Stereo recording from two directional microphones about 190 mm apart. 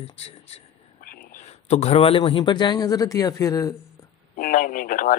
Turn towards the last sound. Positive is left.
turn(degrees=45)  # may be behind; listen again after turning